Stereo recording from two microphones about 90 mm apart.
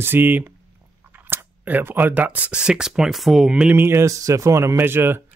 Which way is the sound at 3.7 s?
25° right (ahead or behind).